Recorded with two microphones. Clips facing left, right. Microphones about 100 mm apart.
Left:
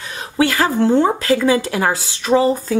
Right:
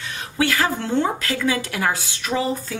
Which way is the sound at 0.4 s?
35° left (ahead or behind).